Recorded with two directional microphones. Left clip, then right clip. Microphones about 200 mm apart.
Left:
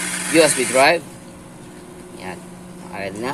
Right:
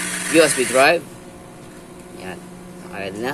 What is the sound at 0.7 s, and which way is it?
Speech, centre (ahead or behind).